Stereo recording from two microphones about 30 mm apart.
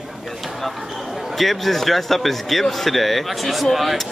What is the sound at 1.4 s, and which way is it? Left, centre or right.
Speech, centre.